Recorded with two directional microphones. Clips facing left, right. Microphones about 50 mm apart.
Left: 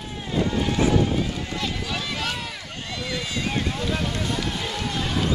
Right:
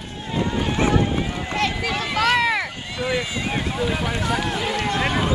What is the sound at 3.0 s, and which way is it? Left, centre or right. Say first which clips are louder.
Speech: right 5 dB; centre.